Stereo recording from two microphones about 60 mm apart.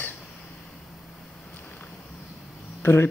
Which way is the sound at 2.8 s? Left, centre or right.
Left.